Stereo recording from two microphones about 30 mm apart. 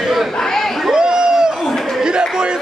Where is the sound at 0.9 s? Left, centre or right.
Right.